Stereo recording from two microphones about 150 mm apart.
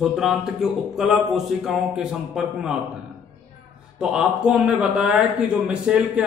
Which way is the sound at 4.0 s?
5° right (ahead or behind).